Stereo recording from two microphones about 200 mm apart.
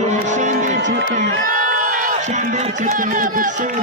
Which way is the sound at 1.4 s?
40° right (ahead or behind).